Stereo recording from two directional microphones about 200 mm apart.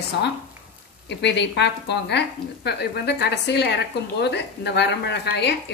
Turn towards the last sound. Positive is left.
turn(degrees=55)  # may be behind; listen again after turning